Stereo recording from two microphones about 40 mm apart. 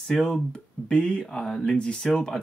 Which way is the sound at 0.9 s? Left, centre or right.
Left.